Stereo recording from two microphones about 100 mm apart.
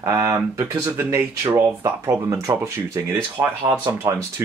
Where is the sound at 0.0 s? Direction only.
30° right (ahead or behind).